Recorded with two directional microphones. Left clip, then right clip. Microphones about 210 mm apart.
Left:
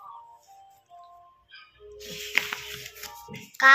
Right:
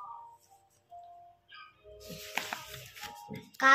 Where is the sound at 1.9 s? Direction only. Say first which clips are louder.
Left 10 dB; 30° right (ahead or behind).